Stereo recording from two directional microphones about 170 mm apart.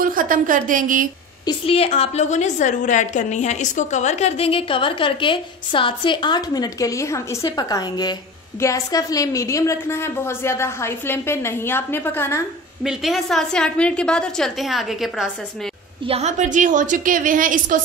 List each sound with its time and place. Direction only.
0.0 s a woman's voice: 55° right (ahead or behind)
1.4 s a woman's voice: 30° left (ahead or behind); by 12.4 s 15° left (ahead or behind)
12.8 s a woman's voice: centre (ahead or behind)
16.1 s a woman's voice: 40° right (ahead or behind)